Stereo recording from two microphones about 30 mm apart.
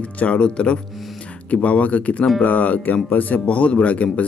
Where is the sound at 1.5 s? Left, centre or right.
Left.